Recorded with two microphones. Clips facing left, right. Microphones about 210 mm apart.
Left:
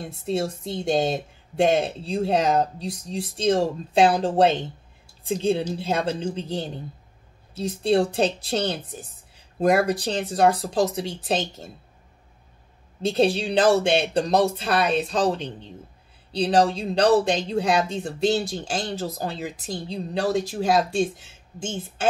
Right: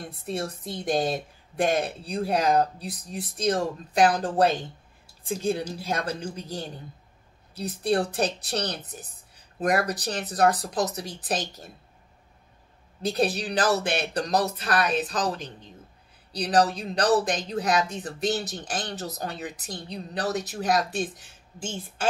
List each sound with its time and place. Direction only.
0.1 s a woman's voice: 25° left (ahead or behind)
13.0 s a woman's voice: 25° left (ahead or behind)